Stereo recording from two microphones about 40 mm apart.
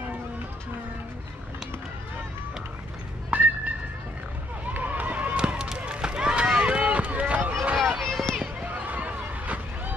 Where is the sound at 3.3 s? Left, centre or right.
Right.